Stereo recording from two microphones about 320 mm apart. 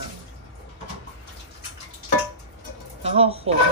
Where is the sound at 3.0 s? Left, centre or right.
Centre.